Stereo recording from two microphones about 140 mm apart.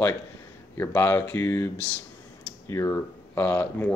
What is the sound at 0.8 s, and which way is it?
Speech, 15° left (ahead or behind).